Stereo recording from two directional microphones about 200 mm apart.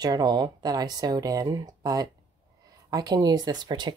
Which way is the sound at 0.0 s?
20° right (ahead or behind).